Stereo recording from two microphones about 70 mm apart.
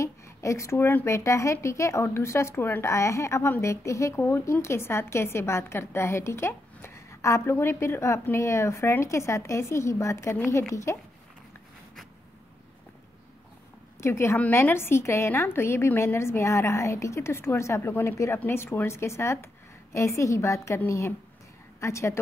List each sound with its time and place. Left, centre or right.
0.0 s speech: left
1.0 s a woman's voice: left
14.0 s a woman's voice: left